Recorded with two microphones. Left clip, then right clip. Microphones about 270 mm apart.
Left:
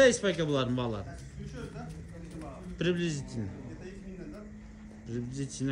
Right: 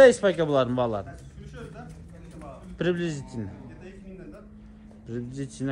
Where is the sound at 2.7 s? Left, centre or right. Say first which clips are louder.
Right 4 dB; centre.